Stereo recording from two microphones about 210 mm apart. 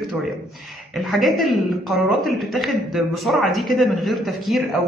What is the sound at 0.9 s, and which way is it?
A woman's voice, centre (ahead or behind).